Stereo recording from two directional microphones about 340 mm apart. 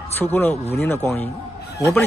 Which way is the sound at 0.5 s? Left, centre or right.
Centre.